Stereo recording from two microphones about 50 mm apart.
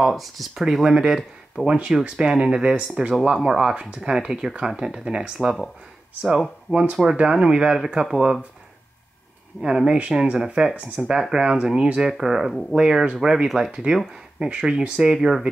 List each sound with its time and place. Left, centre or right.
0.0 s speech: centre; by 5.6 s right
6.7 s speech: centre
9.6 s speech: centre
11.1 s speech: centre
12.1 s speech: centre